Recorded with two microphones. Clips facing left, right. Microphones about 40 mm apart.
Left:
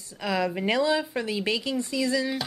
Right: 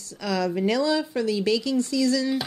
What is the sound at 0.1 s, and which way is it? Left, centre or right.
Speech, left.